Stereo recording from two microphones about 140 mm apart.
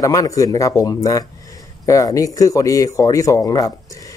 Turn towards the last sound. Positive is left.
turn(degrees=25)  # may be behind; listen again after turning